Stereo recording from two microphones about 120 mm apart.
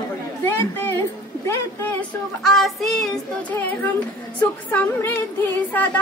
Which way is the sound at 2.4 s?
Centre (ahead or behind).